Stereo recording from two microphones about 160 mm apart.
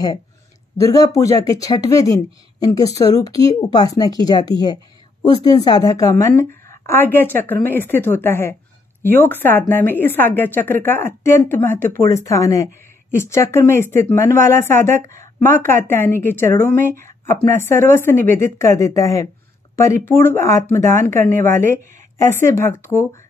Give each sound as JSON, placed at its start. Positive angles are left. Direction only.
{"t": 0.7, "sound": "speech", "side_deg": 20}